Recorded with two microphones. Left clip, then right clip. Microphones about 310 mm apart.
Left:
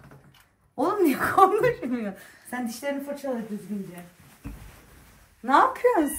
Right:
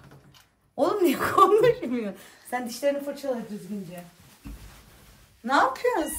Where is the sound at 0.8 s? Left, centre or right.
Centre.